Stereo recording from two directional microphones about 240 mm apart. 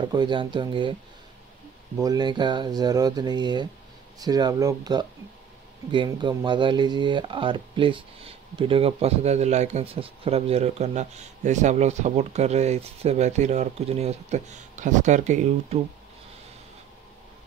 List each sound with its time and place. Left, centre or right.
0.0 s speech: centre
2.0 s speech: centre